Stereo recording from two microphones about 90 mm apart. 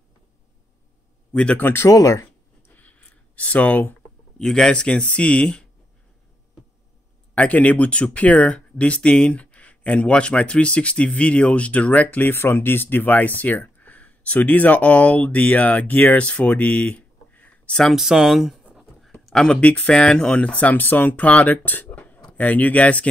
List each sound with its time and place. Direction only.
1.3 s speech: 15° left (ahead or behind)
1.9 s speech: 40° left (ahead or behind)
2.7 s a sound: 15° left (ahead or behind)
4.4 s speech: 5° left (ahead or behind)
7.3 s speech: 15° left (ahead or behind)